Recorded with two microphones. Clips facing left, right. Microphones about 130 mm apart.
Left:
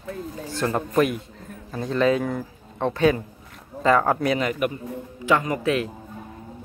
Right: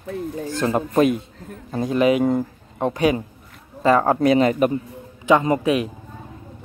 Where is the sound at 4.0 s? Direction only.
30° right (ahead or behind).